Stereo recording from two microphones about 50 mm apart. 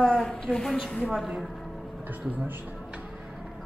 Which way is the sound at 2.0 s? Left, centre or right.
Right.